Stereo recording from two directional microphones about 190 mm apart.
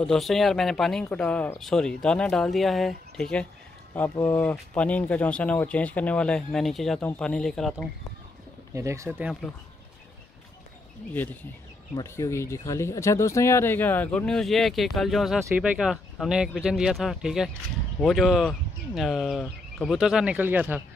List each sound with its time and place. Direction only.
0.0 s speech: centre (ahead or behind)
8.7 s speech: 15° right (ahead or behind)
11.9 s speech: 15° left (ahead or behind); by 20.8 s 10° right (ahead or behind)